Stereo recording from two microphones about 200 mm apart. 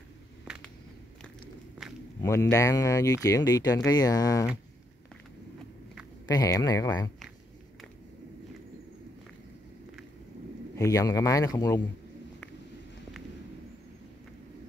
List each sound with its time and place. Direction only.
2.2 s speech: 15° left (ahead or behind)
6.2 s speech: 20° left (ahead or behind)
10.8 s speech: 15° left (ahead or behind)